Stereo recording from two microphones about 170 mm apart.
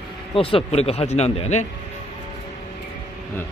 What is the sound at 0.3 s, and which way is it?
Speech, 30° left (ahead or behind).